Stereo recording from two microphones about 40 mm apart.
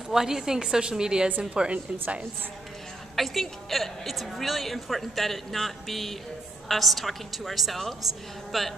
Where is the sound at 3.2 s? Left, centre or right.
Centre.